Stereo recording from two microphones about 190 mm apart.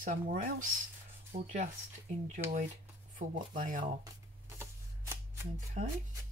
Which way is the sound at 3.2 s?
45° right (ahead or behind).